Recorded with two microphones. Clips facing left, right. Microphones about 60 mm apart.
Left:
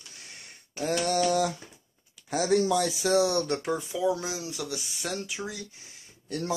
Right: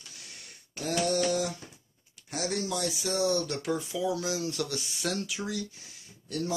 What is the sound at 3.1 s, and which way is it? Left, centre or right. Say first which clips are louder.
Speech: left 4 dB; left.